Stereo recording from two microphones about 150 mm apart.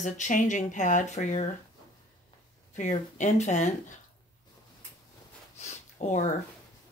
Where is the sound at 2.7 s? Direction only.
55° left (ahead or behind).